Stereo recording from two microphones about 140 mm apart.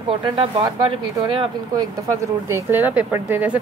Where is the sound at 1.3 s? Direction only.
40° right (ahead or behind).